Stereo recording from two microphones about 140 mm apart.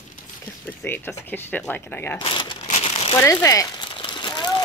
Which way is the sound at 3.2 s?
20° left (ahead or behind).